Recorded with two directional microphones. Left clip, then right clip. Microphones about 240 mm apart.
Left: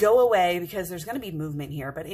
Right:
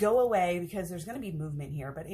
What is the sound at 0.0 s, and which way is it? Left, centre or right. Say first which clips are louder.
A woman's voice: left 7 dB; left.